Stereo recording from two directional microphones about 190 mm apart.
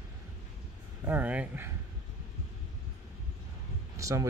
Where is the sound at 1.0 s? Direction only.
10° right (ahead or behind).